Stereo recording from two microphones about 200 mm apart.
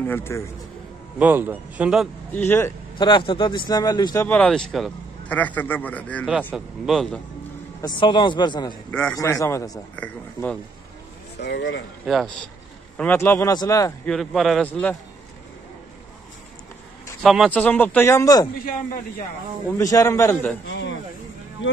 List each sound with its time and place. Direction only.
0.0 s speech: 10° left (ahead or behind)
1.2 s a man's voice: 10° right (ahead or behind)
2.3 s speech: 10° left (ahead or behind)
3.0 s speech: 25° left (ahead or behind); by 7.2 s centre (ahead or behind)
7.8 s a man's voice: 25° left (ahead or behind); by 10.6 s 10° left (ahead or behind)
11.4 s speech: 60° left (ahead or behind)
12.1 s speech: centre (ahead or behind); by 13.9 s 15° left (ahead or behind)
14.0 s speech: centre (ahead or behind)
17.2 s speech: centre (ahead or behind); by 18.5 s 20° left (ahead or behind)
19.8 s speech: 15° left (ahead or behind)
20.6 s speech: 65° left (ahead or behind)